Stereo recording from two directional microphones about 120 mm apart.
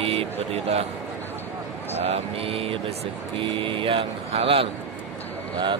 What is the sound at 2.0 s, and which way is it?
Speech, 55° right (ahead or behind).